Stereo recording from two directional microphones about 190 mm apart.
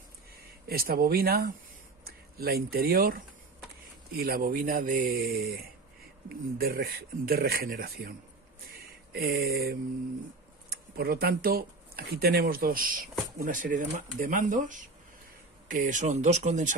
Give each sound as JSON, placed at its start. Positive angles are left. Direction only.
{"t": 0.3, "sound": "speech", "side_deg": -55}
{"t": 8.6, "sound": "a sound", "side_deg": -50}
{"t": 10.7, "sound": "speech", "side_deg": -55}